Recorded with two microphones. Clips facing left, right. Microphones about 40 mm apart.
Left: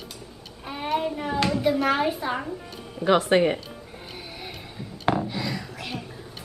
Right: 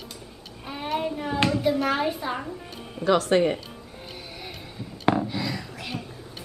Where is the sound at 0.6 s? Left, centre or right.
Centre.